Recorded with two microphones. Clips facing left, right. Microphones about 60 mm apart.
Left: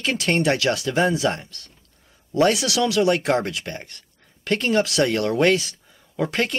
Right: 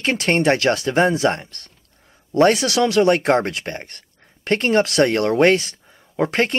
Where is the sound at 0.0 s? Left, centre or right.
Right.